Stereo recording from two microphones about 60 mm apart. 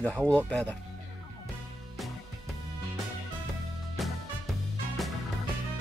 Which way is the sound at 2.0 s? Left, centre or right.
Centre.